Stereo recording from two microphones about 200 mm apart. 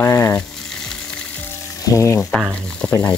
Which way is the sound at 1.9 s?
15° left (ahead or behind).